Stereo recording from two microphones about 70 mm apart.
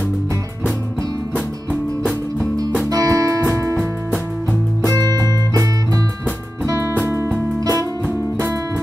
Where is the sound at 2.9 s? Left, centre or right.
Right.